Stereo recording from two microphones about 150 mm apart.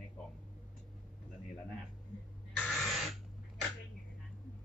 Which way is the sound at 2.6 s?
Centre (ahead or behind).